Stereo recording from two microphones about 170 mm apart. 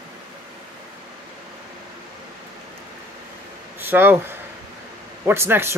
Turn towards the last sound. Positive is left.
turn(degrees=-15)  # may be behind; listen again after turning